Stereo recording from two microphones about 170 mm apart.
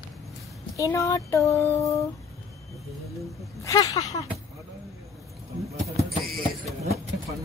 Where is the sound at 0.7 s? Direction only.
20° left (ahead or behind).